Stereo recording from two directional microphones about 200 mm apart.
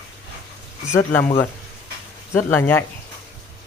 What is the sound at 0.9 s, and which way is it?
Speech, 10° left (ahead or behind).